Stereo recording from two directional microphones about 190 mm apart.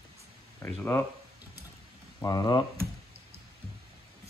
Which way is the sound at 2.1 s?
20° left (ahead or behind).